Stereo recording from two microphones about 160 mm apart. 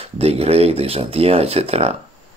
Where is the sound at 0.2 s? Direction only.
40° right (ahead or behind).